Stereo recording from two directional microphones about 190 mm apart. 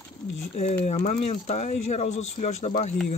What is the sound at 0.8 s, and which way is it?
Speech, 40° left (ahead or behind).